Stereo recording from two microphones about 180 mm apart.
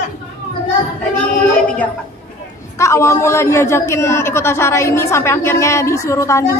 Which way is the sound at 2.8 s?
15° left (ahead or behind).